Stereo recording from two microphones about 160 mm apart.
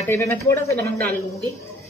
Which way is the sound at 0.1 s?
15° left (ahead or behind).